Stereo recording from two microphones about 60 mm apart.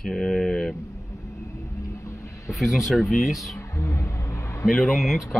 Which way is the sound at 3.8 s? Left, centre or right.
Left.